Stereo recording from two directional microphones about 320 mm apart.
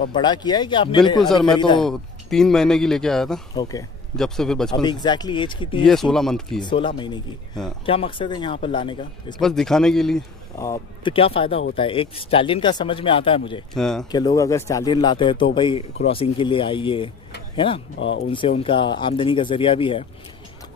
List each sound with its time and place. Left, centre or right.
0.1 s speech: centre
1.2 s speech: centre
1.5 s speech: centre
1.8 s speech: centre
4.8 s speech: centre
6.1 s speech: centre
6.6 s speech: centre
9.4 s speech: centre
13.7 s speech: centre
17.9 s speech: left
18.6 s speech: centre